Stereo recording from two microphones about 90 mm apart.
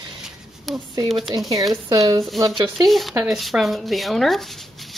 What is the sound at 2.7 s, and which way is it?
Speech, centre (ahead or behind).